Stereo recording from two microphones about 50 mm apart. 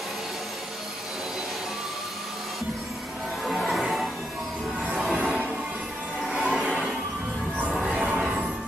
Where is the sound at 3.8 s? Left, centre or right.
Centre.